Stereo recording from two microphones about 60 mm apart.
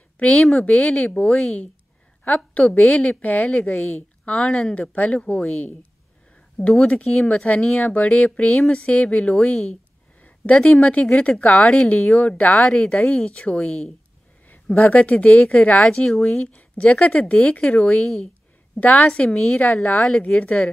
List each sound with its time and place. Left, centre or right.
0.3 s a woman's voice: centre
4.3 s speech: centre
4.9 s a woman's voice: left
6.8 s a woman's voice: left
12.5 s speech: centre
16.5 s a woman's voice: left